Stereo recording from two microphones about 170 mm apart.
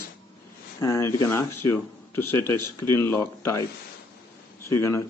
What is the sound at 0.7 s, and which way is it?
Speech, 15° left (ahead or behind).